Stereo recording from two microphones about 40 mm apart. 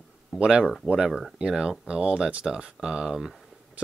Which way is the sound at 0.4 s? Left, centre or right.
Right.